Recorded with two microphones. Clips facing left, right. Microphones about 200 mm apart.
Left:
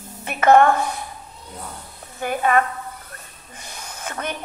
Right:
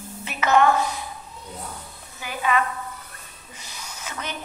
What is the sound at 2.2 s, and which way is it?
A woman's voice, 50° left (ahead or behind).